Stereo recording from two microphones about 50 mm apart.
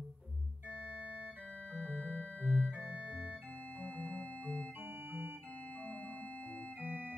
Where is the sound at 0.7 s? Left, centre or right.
Right.